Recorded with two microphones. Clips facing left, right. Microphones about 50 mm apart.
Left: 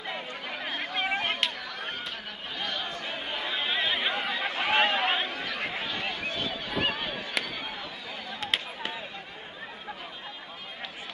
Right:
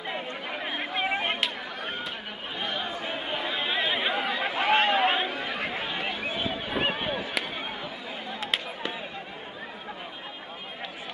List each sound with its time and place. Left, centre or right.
0.0 s chatter: centre
2.6 s chatter: centre
7.4 s a sound: centre